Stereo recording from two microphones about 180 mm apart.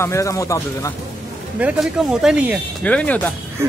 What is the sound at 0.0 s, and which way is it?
Speech, 15° left (ahead or behind).